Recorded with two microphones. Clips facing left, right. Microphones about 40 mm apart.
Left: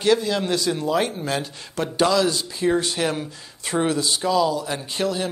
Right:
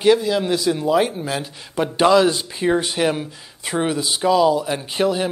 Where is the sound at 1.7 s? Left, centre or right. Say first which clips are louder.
Right 5 dB; centre.